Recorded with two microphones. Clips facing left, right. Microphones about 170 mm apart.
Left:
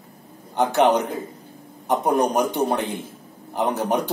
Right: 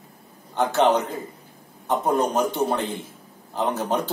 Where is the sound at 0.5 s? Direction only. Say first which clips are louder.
Left 2 dB; 15° left (ahead or behind).